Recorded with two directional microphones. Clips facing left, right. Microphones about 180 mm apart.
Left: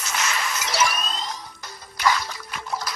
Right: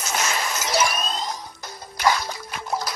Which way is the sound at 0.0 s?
45° right (ahead or behind).